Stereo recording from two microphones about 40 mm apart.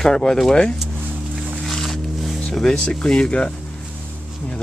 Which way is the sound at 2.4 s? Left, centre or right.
Centre.